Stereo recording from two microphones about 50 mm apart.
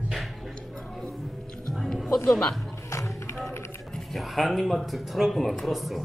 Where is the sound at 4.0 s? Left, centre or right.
Centre.